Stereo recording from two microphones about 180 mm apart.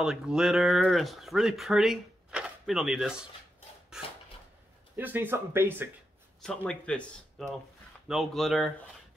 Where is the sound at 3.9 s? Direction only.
5° right (ahead or behind).